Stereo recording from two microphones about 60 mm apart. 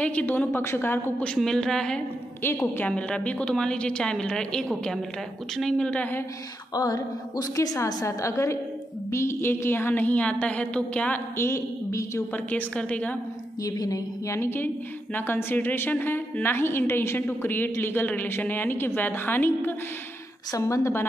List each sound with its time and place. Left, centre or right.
0.0 s a woman's voice: left
0.5 s a woman's voice: left
1.2 s a woman's voice: centre
5.8 s a woman's voice: left
6.7 s a sound: left
7.5 s a woman's voice: left
7.8 s a woman's voice: left
11.3 s a woman's voice: left
12.4 s a woman's voice: left
13.7 s a woman's voice: left
14.3 s a woman's voice: left
20.5 s a woman's voice: left